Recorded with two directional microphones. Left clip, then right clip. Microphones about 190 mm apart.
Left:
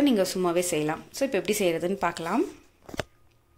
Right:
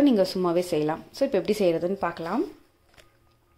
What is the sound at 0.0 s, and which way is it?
A woman's voice, 15° right (ahead or behind).